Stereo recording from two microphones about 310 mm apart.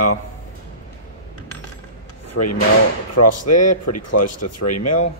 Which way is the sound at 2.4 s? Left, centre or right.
Left.